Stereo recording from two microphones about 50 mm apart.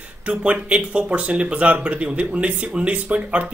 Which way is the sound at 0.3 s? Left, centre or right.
Right.